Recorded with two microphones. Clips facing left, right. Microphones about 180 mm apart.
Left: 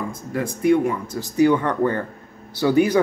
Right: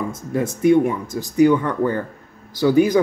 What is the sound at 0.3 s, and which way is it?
Speech, 25° right (ahead or behind).